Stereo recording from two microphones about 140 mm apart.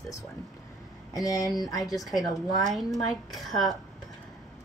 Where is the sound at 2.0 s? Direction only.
Centre (ahead or behind).